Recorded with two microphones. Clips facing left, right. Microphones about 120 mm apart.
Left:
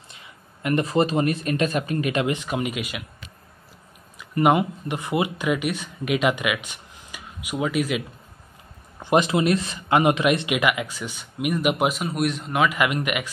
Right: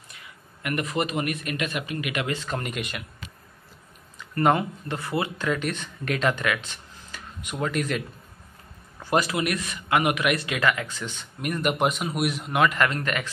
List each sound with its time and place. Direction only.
0.1 s speech: 25° left (ahead or behind)
2.2 s speech: 15° left (ahead or behind)
4.2 s speech: 15° left (ahead or behind)
9.0 s speech: 20° left (ahead or behind)